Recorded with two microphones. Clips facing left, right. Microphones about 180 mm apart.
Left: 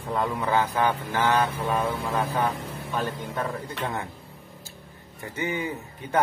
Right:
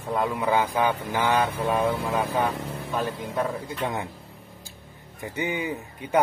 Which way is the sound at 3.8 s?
15° right (ahead or behind).